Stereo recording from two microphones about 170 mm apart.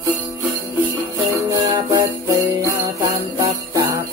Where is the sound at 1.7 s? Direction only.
20° right (ahead or behind).